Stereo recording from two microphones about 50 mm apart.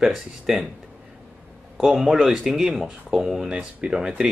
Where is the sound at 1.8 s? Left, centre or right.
Centre.